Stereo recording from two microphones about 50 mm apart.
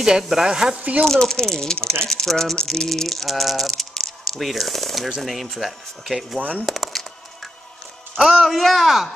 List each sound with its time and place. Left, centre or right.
0.2 s speech: centre
1.0 s speech: centre
2.5 s rattle: centre
6.6 s speech: centre
8.2 s speech: centre
8.5 s rattle: centre